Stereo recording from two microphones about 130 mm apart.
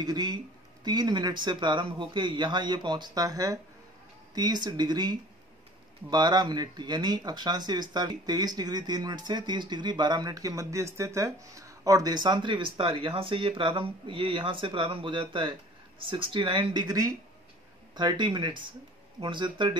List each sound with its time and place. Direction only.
0.0 s speech: 30° right (ahead or behind)